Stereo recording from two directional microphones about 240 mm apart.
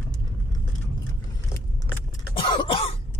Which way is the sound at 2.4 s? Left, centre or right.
Left.